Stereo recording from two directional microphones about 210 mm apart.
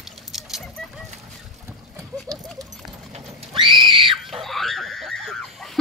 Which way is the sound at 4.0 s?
Centre (ahead or behind).